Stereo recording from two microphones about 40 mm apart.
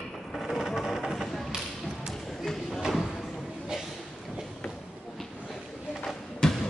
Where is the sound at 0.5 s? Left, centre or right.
Centre.